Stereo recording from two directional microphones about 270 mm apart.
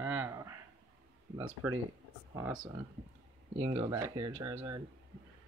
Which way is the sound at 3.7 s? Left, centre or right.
Centre.